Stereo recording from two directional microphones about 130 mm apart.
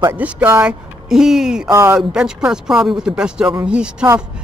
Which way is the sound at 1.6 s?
20° right (ahead or behind).